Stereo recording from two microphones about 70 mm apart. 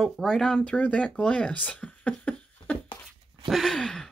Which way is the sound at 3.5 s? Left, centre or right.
Centre.